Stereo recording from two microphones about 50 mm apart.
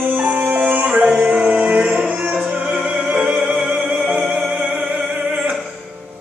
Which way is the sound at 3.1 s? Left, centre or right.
Right.